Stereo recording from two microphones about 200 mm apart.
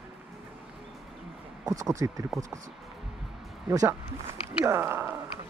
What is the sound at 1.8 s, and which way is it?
Speech, 15° right (ahead or behind).